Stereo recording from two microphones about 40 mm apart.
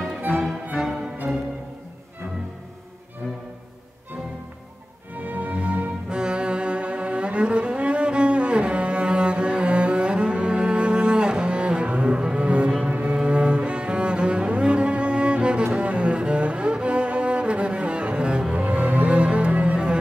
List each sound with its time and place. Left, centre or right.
0.3 s music: centre
5.1 s music: right
6.0 s cello: right
18.5 s music: right